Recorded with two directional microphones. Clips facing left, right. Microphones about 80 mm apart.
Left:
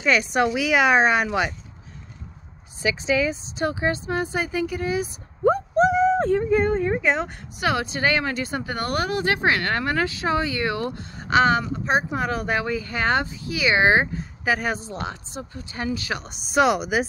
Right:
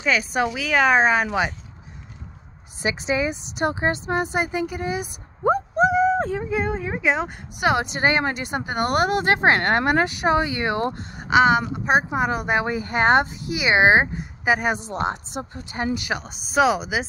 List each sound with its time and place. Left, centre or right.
0.0 s speech: centre
0.6 s speech: centre
2.8 s a woman's voice: right; by 7.2 s centre
7.6 s a woman's voice: right
11.1 s a sound: centre
11.7 s a woman's voice: centre
14.9 s a woman's voice: right
16.2 s speech: centre